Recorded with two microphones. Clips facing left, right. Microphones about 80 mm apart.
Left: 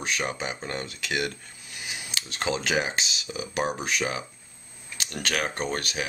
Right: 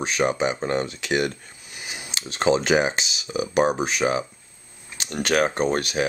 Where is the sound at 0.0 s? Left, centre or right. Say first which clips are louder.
Right 8 dB; right.